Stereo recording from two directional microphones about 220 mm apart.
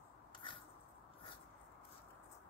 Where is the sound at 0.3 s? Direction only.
20° left (ahead or behind).